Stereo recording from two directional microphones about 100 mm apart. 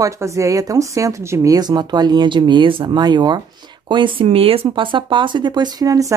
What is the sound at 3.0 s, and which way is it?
Speech, 45° right (ahead or behind).